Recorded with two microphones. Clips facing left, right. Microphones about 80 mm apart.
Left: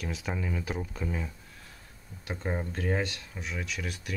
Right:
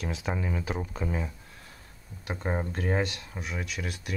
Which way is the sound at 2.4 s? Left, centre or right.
Right.